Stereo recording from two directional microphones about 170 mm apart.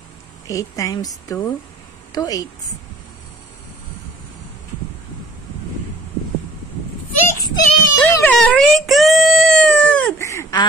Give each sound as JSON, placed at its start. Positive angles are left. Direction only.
{"t": 0.5, "sound": "a woman's voice", "side_deg": 20}
{"t": 7.2, "sound": "child singing", "side_deg": 20}
{"t": 8.0, "sound": "wail", "side_deg": 10}